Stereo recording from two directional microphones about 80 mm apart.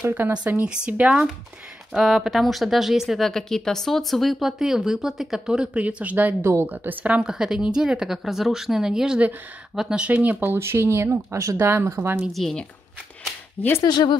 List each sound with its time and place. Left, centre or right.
0.7 s speech: centre
6.4 s speech: right
12.3 s speech: centre
13.6 s speech: left
13.8 s speech: left